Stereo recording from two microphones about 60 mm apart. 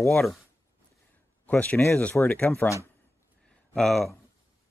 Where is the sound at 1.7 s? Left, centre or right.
Left.